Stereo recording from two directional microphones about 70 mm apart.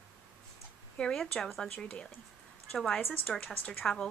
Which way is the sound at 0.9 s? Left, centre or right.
Centre.